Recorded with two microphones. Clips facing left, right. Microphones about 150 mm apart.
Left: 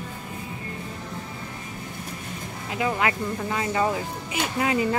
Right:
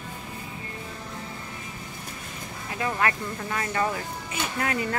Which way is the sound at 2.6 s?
15° left (ahead or behind).